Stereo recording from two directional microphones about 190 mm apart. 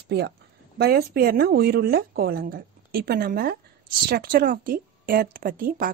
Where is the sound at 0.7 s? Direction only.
55° right (ahead or behind).